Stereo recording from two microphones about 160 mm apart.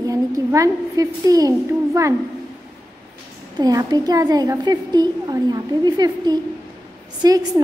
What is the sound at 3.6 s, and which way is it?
A woman's voice, 25° right (ahead or behind).